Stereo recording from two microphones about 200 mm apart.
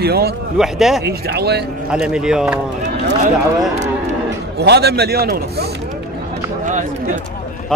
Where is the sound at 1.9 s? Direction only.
5° right (ahead or behind).